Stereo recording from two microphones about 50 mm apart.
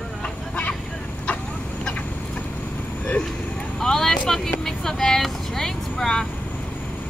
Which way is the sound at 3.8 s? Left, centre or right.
Centre.